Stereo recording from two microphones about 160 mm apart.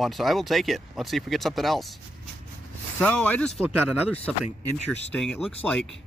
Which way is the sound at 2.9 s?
10° left (ahead or behind).